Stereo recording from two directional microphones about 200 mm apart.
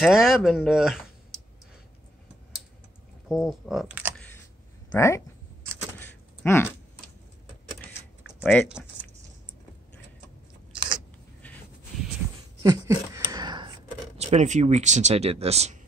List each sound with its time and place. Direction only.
0.0 s speech: centre (ahead or behind)
3.3 s speech: centre (ahead or behind)
4.9 s speech: 15° left (ahead or behind)
5.9 s a sound: 10° left (ahead or behind)
10.7 s biting: 25° right (ahead or behind)
12.6 s a sound: 15° right (ahead or behind)
14.1 s speech: 35° right (ahead or behind)